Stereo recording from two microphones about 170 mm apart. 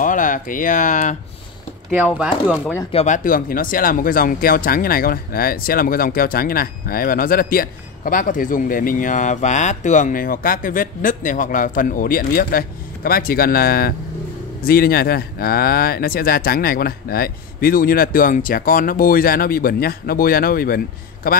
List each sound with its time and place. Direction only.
0.0 s speech: 50° left (ahead or behind)
2.5 s speech: 10° left (ahead or behind)
2.9 s speech: 35° left (ahead or behind)
3.3 s speech: 55° left (ahead or behind)